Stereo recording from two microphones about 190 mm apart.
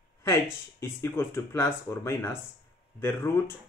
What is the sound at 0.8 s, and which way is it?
Speech, 15° left (ahead or behind).